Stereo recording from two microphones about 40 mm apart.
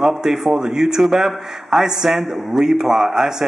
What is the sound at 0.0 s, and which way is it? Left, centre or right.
Speech, centre.